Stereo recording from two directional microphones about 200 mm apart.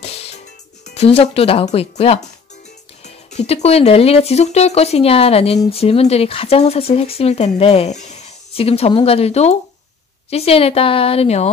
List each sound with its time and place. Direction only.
0.0 s music: 30° left (ahead or behind)
0.9 s speech: 30° left (ahead or behind)
3.3 s speech: 35° left (ahead or behind)